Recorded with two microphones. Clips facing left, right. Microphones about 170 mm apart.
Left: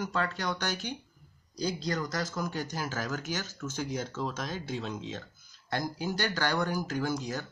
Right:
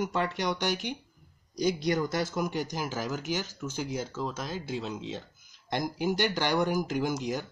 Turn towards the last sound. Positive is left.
turn(degrees=-15)  # may be behind; listen again after turning